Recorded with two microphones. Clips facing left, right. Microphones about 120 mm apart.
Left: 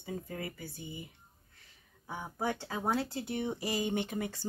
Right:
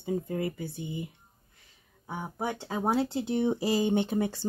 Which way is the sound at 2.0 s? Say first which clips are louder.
Right 2 dB; 20° right (ahead or behind).